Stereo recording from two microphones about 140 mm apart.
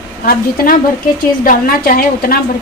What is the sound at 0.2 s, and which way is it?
A woman's voice, 90° left.